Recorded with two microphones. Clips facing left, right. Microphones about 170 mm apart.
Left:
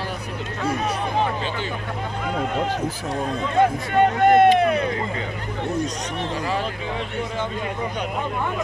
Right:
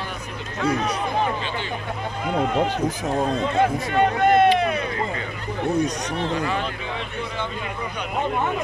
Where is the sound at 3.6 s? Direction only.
50° left (ahead or behind).